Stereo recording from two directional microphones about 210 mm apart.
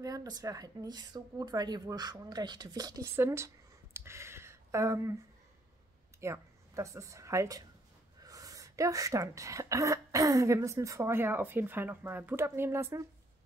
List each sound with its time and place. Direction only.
0.0 s a woman's voice: 15° right (ahead or behind)
6.2 s speech: 15° right (ahead or behind)